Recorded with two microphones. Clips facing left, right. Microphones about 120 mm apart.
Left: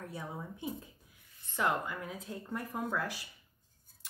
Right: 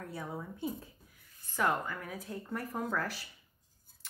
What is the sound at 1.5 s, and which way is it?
Speech, 20° left (ahead or behind).